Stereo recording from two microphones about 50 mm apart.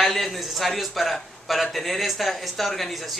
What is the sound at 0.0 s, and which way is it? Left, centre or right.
A man's voice, centre.